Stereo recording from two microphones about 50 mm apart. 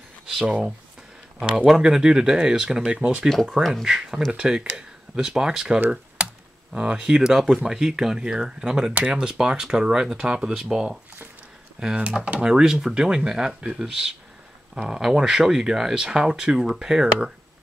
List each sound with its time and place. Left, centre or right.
0.4 s speech: centre
3.0 s speech: right
3.8 s speech: centre
6.2 s computer keyboard: right
6.7 s speech: centre